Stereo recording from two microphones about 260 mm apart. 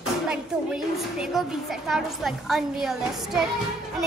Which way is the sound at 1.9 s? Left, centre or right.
Centre.